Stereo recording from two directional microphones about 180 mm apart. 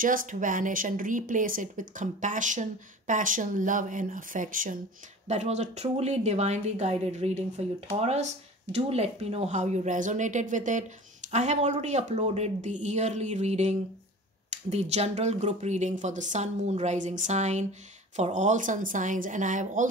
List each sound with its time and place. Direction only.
0.0 s speech: 50° right (ahead or behind)